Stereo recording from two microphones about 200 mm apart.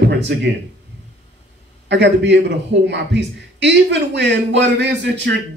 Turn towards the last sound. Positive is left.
turn(degrees=-60)  # may be behind; listen again after turning